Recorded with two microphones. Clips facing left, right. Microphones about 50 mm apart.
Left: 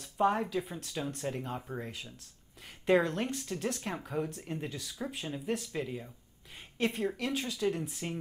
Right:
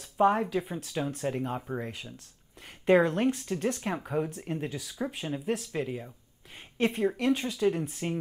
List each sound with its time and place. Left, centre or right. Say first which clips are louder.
0.0 s speech: right 4 dB; centre
8.0 s speech: right 8 dB; centre